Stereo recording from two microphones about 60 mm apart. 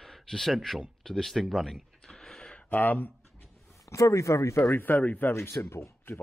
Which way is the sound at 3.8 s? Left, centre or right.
Left.